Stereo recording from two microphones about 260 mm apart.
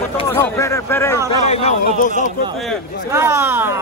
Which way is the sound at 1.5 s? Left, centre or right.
Left.